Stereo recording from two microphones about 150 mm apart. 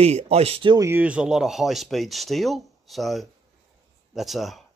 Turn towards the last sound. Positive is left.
turn(degrees=0)  # may be behind; listen again after turning